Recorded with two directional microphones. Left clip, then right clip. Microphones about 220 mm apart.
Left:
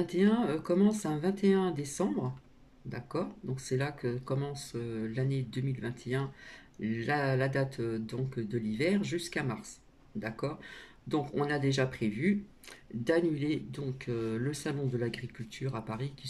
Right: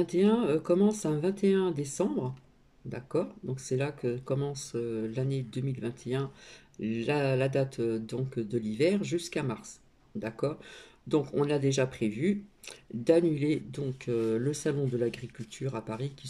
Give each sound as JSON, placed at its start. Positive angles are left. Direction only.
{"t": 0.0, "sound": "speech", "side_deg": -10}
{"t": 11.1, "sound": "speech", "side_deg": -10}